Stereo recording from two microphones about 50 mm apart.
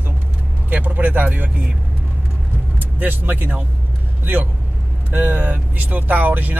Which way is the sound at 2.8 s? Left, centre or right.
Right.